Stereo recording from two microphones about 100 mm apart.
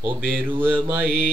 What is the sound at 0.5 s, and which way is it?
Mantra, 20° right (ahead or behind).